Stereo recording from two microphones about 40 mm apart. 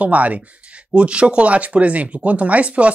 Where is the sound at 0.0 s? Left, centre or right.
Right.